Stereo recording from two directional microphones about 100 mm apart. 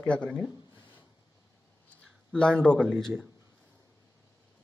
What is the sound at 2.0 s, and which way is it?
Speech, 10° left (ahead or behind).